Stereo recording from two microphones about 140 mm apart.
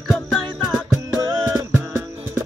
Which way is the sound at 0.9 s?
20° right (ahead or behind).